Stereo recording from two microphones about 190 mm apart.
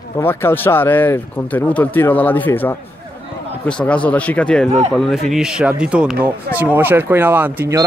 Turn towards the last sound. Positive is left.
turn(degrees=-10)  # may be behind; listen again after turning